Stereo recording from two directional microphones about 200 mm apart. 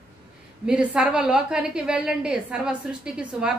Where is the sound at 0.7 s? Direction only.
5° right (ahead or behind).